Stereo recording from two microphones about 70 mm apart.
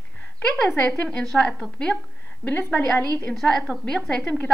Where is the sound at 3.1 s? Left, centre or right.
Centre.